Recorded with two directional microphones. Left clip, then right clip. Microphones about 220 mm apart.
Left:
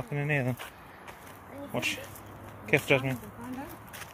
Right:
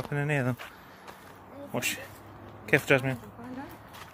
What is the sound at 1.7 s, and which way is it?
Speech, 20° right (ahead or behind).